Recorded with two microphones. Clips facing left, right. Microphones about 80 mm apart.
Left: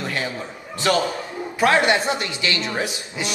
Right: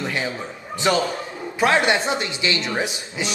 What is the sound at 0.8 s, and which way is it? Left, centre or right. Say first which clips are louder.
A man's voice: even; centre.